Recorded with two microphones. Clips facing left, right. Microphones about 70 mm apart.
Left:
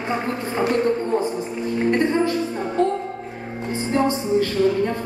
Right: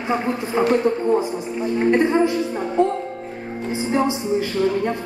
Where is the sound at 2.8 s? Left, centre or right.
Centre.